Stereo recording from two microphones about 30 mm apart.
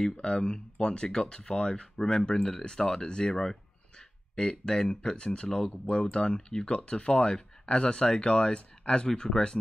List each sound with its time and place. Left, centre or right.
0.0 s speech: left